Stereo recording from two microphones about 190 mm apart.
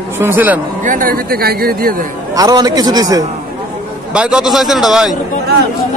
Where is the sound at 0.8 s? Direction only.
45° right (ahead or behind).